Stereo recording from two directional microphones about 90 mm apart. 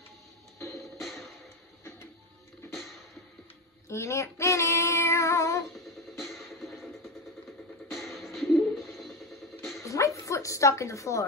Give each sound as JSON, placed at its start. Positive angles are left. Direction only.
{"t": 0.9, "sound": "music", "side_deg": 0}
{"t": 3.9, "sound": "female singing", "side_deg": 30}
{"t": 6.1, "sound": "music", "side_deg": -5}
{"t": 9.6, "sound": "dog", "side_deg": 0}
{"t": 9.8, "sound": "dog", "side_deg": 35}